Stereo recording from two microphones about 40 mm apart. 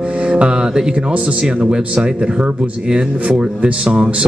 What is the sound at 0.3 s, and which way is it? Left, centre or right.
Mantra, right.